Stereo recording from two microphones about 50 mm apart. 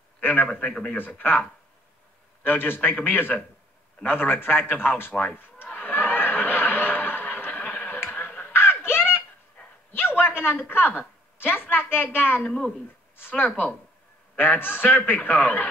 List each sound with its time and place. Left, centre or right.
0.2 s a man's voice: left
0.5 s a man's voice: left
0.9 s a woman's voice: left
2.4 s a woman's voice: left
5.7 s snicker: left
8.3 s a sound: left
8.5 s a sound: left
10.6 s a woman's voice: left